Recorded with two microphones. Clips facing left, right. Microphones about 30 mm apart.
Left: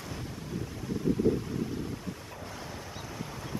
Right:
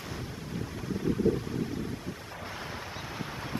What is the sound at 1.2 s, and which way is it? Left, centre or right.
Wind, right.